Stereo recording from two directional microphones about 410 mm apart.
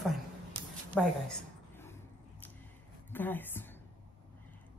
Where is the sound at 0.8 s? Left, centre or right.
Centre.